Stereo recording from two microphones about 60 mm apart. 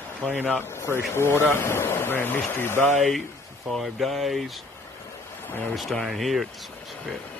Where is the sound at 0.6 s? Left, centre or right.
Left.